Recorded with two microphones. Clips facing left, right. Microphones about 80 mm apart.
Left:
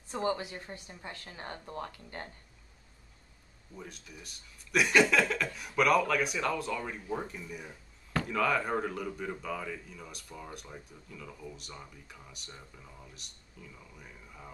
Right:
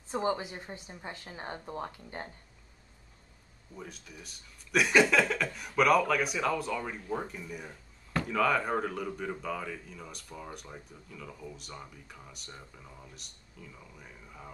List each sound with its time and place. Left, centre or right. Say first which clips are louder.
0.1 s a woman's voice: right 1 dB; right
3.7 s speech: right 1 dB; centre